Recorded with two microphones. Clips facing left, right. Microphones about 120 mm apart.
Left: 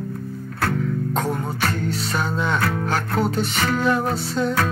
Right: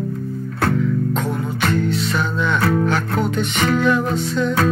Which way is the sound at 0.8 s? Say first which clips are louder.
Right 3 dB; 40° left (ahead or behind).